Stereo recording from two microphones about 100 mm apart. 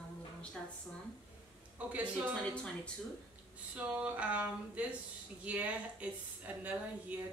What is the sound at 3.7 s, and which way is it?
A woman's voice, 15° right (ahead or behind).